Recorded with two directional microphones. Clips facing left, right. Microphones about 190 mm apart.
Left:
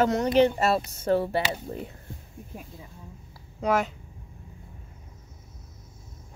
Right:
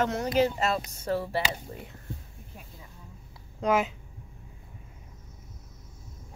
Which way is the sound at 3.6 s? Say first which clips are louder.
Even; centre (ahead or behind).